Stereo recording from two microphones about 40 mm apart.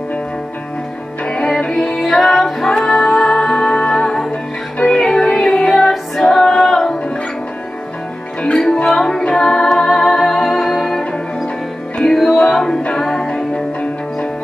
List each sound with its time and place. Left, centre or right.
1.2 s music: left
2.0 s music: centre
4.3 s music: left
4.9 s music: centre
5.2 s music: left; by 7.0 s centre
8.4 s music: left
8.8 s music: centre
12.1 s music: centre